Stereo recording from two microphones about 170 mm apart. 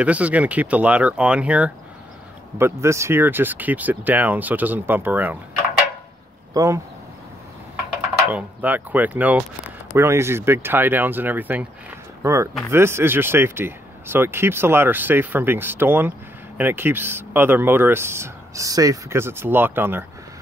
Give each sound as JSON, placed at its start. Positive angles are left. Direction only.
{"t": 0.0, "sound": "speech", "side_deg": -10}
{"t": 6.5, "sound": "speech", "side_deg": -20}
{"t": 8.3, "sound": "speech", "side_deg": -10}